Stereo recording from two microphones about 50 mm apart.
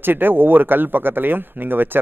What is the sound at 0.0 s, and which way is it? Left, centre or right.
A man's voice, right.